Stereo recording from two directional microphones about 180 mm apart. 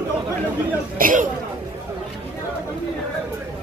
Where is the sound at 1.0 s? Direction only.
50° right (ahead or behind).